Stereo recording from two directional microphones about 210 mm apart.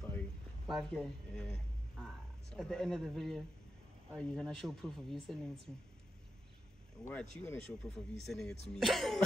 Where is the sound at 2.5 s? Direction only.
Centre (ahead or behind).